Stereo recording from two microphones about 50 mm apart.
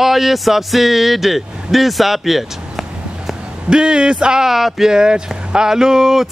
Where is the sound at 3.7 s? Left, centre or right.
Centre.